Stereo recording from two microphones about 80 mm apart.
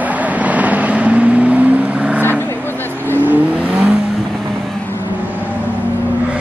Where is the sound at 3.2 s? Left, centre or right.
Right.